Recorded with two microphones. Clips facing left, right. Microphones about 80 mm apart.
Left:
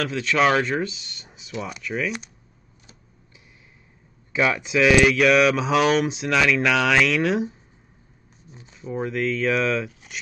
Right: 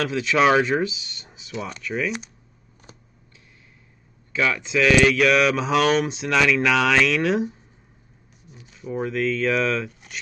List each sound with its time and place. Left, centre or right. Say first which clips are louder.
0.0 s speech: right 1 dB; centre
4.3 s speech: left 1 dB; centre
8.5 s a sound: right 1 dB; left
8.9 s speech: right 1 dB; centre